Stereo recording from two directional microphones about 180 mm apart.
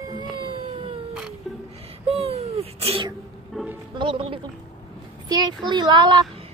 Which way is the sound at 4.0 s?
30° right (ahead or behind).